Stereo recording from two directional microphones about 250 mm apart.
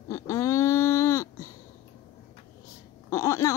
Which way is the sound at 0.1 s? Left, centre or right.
Centre.